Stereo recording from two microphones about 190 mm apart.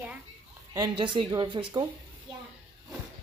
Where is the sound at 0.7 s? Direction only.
25° right (ahead or behind).